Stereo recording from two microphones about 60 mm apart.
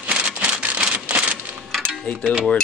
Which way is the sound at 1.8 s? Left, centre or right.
Centre.